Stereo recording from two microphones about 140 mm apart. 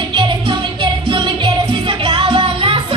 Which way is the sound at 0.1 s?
35° right (ahead or behind).